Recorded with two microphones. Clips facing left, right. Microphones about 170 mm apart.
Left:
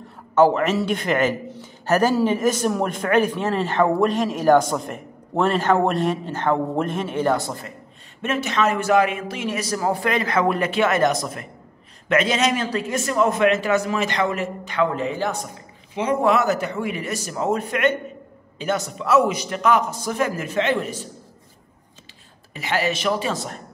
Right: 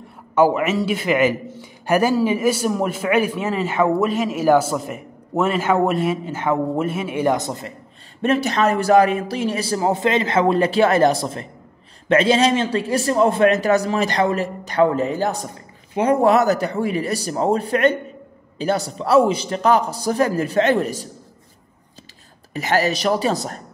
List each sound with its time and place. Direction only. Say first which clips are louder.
0.3 s a man's voice: even; 10° right (ahead or behind)
8.2 s a man's voice: right 4 dB; 35° right (ahead or behind)
22.5 s a man's voice: right 4 dB; 40° right (ahead or behind)